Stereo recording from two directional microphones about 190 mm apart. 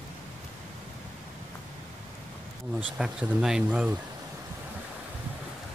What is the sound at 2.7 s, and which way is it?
Speech, 5° right (ahead or behind).